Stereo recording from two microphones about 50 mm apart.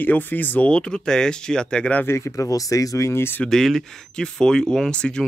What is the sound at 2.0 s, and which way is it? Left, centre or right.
Speech, left.